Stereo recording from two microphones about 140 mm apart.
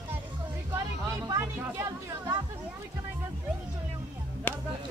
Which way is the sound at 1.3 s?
25° right (ahead or behind).